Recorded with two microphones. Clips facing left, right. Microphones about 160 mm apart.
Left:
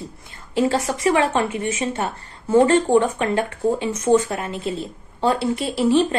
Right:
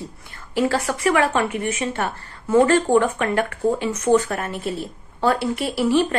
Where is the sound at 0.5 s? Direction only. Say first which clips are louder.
Left 1 dB; 25° left (ahead or behind).